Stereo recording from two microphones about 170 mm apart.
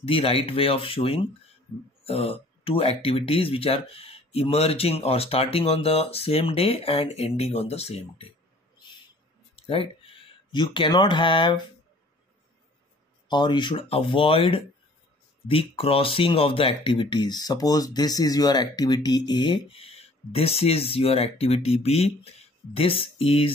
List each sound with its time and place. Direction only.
0.0 s speech: 35° left (ahead or behind)
8.7 s owl: 25° left (ahead or behind)
9.6 s speech: 35° left (ahead or behind)
13.3 s speech: 25° left (ahead or behind)